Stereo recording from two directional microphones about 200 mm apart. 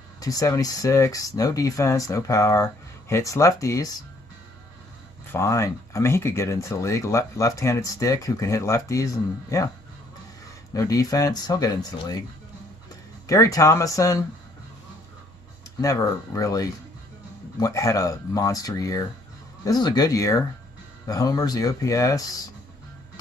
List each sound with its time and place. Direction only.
0.2 s speech: 20° left (ahead or behind)
5.2 s speech: 10° left (ahead or behind)
10.7 s speech: 15° left (ahead or behind)
13.3 s speech: 15° left (ahead or behind)
15.8 s speech: 15° left (ahead or behind)